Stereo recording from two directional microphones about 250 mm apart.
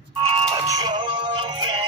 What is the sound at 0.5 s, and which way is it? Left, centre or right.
Music, centre.